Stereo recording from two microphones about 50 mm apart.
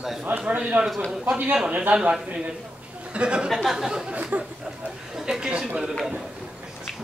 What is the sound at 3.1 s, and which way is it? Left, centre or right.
Speech, right.